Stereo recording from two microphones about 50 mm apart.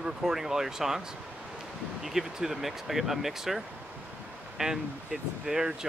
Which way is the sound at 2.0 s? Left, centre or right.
Centre.